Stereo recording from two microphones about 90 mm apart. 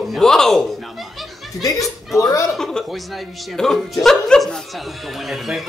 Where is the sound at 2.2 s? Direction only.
40° left (ahead or behind).